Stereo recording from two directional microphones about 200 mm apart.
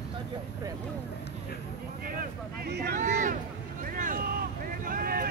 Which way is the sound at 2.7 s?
55° right (ahead or behind).